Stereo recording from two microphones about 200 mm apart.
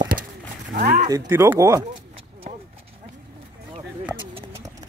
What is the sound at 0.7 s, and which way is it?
Speech, 40° right (ahead or behind).